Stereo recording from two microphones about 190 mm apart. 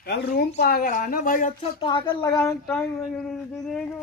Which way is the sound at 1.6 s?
25° left (ahead or behind).